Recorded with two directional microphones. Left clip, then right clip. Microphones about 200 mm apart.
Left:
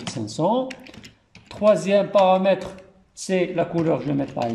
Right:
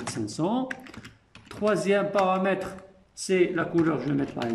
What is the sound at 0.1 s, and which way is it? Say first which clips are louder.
Speech: left 7 dB; 15° left (ahead or behind).